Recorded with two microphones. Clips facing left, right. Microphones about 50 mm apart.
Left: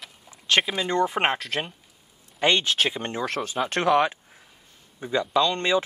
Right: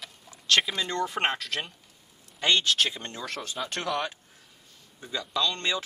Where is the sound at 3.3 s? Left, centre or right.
Centre.